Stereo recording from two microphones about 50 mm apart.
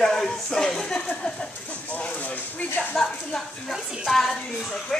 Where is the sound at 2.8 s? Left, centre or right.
Centre.